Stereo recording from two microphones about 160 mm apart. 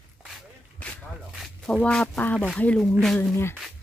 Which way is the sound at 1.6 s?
5° left (ahead or behind).